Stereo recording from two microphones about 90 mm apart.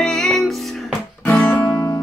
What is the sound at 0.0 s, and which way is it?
Music, 5° left (ahead or behind).